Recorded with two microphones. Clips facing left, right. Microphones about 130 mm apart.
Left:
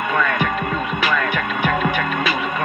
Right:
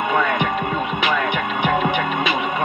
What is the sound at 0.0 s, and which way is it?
Music, 20° right (ahead or behind).